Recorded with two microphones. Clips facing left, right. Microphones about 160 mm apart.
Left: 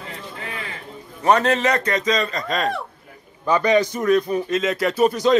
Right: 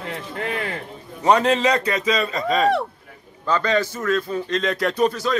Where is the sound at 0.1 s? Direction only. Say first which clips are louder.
Right 8 dB; 60° right (ahead or behind).